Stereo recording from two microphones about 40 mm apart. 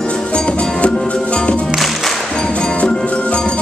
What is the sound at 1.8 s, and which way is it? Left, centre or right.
Music, centre.